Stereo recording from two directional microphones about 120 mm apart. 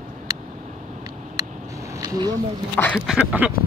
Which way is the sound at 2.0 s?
35° right (ahead or behind).